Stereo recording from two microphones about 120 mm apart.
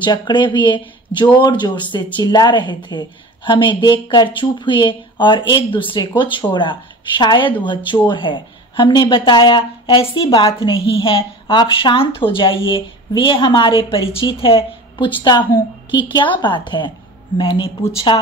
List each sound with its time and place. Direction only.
0.0 s a woman's voice: 40° left (ahead or behind)
15.2 s a woman's voice: 35° left (ahead or behind)